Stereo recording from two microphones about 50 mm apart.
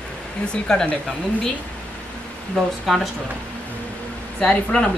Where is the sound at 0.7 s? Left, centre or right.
Centre.